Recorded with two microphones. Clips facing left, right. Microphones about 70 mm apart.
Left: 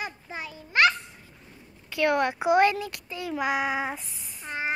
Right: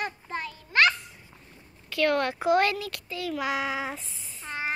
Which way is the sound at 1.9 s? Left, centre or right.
Centre.